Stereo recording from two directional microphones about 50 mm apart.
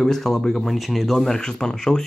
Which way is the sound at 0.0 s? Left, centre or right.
Centre.